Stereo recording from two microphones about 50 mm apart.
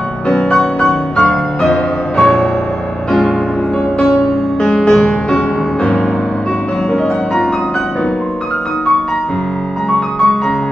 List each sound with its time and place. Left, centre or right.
0.3 s music: centre
4.6 s music: centre